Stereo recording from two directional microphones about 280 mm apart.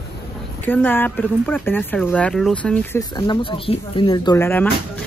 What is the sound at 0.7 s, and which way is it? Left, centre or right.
Speech, centre.